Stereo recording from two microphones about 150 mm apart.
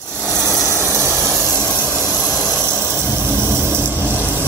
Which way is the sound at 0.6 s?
20° right (ahead or behind).